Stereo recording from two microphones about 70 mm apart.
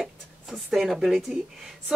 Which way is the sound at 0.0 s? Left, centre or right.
Centre.